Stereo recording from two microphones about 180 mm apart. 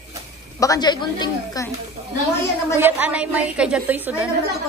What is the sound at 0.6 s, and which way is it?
A woman's voice, 20° left (ahead or behind).